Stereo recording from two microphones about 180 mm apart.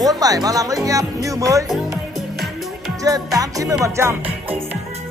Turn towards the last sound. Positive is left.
turn(degrees=-15)  # may be behind; listen again after turning